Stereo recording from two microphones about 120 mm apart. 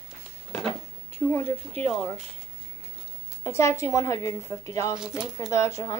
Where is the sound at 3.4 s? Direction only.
25° left (ahead or behind).